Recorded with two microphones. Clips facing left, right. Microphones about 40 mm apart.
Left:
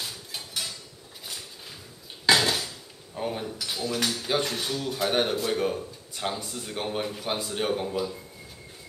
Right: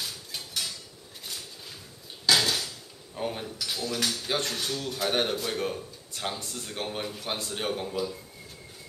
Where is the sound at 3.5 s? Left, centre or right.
Centre.